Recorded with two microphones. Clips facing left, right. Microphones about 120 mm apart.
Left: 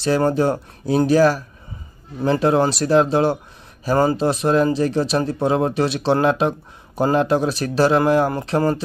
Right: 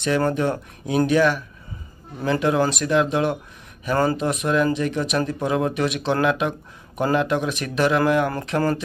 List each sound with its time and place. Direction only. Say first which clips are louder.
0.0 s speech: left 3 dB; 35° left (ahead or behind)